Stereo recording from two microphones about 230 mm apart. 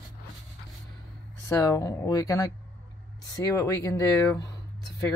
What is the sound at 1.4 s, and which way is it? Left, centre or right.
Speech, centre.